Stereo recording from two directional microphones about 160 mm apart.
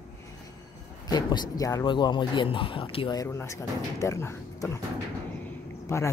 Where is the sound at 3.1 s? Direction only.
20° left (ahead or behind).